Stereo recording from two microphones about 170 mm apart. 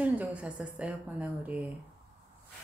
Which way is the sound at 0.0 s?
10° right (ahead or behind).